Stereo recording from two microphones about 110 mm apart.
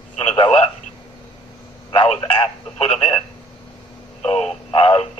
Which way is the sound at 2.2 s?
55° left (ahead or behind).